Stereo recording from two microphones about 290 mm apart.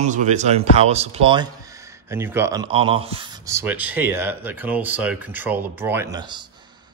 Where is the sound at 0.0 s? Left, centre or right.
Right.